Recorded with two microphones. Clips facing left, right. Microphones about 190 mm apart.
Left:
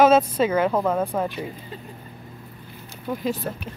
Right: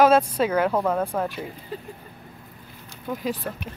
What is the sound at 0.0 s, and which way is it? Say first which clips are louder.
A woman's voice: left 1 dB; 5° left (ahead or behind).